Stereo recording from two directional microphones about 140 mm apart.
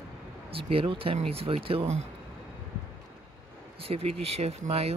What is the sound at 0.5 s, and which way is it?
Speech, 40° right (ahead or behind).